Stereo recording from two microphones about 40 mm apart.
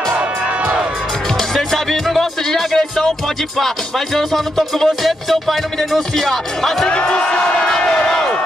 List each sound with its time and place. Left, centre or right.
1.5 s music: centre
5.8 s speech: centre
6.9 s speech: left